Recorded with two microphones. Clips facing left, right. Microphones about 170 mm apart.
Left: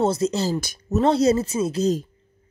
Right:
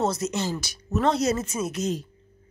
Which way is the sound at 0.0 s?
30° left (ahead or behind).